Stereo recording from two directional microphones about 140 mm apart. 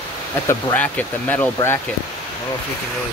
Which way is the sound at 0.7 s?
10° left (ahead or behind).